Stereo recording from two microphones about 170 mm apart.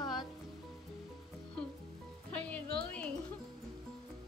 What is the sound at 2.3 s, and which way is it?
Music, 10° left (ahead or behind).